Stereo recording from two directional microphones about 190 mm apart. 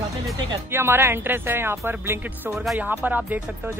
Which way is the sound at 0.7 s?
10° right (ahead or behind).